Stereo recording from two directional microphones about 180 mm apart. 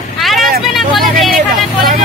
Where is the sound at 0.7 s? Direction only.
Centre (ahead or behind).